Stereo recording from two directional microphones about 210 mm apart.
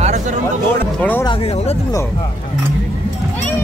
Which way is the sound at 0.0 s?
35° right (ahead or behind).